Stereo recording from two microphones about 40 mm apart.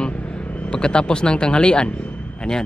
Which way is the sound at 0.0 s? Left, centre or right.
Left.